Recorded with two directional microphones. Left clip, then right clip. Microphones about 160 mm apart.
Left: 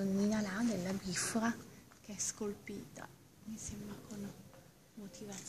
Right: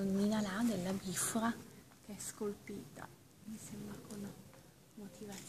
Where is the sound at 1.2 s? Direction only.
30° left (ahead or behind).